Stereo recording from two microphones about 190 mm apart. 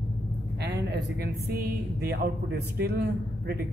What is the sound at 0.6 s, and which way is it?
A man's voice, 60° right (ahead or behind).